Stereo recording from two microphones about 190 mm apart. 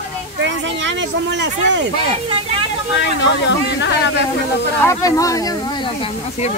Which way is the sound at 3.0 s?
65° left (ahead or behind).